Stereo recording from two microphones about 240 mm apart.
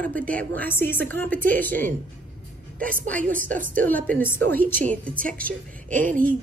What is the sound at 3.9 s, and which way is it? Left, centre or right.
Speech, centre.